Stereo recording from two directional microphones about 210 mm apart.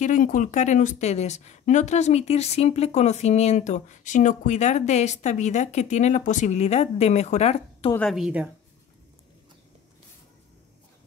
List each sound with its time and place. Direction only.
0.0 s a woman's voice: 40° left (ahead or behind)
7.9 s a woman's voice: 5° left (ahead or behind)